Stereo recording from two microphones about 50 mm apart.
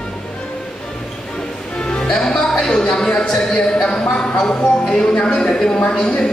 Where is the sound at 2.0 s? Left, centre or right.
Centre.